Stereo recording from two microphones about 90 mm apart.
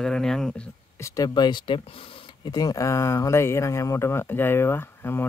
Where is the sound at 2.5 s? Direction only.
45° left (ahead or behind).